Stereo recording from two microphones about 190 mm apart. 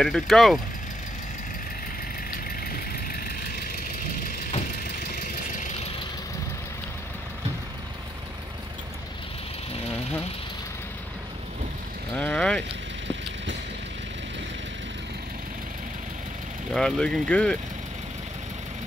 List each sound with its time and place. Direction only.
0.0 s speech: centre (ahead or behind)
4.8 s vehicle: 55° left (ahead or behind)
12.2 s vehicle: 5° left (ahead or behind)
16.7 s speech: 5° left (ahead or behind)